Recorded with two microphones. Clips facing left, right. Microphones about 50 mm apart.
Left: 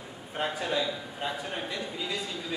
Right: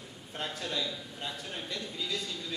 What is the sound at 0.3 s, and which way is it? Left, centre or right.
A man's voice, centre.